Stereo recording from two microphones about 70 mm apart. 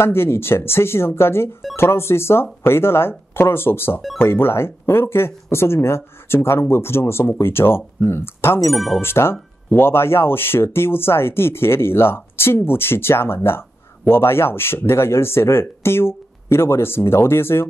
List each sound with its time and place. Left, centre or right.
0.0 s speech: left
8.7 s speech: centre
9.0 s speech: left